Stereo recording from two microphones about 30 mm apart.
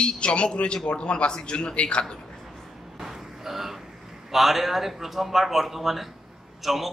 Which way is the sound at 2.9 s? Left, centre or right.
Centre.